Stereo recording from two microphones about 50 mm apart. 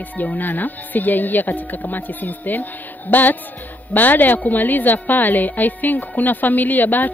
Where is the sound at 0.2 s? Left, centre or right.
Left.